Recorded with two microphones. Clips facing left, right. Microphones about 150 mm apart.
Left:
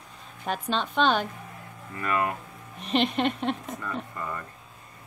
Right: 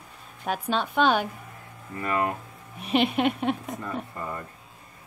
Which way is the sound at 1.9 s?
30° right (ahead or behind).